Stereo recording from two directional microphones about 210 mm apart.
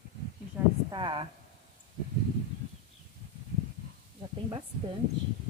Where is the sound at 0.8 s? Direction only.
25° right (ahead or behind).